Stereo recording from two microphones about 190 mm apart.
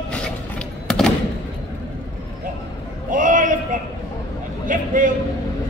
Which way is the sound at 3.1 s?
40° right (ahead or behind).